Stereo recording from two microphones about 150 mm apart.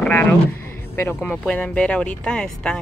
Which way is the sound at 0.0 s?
10° left (ahead or behind).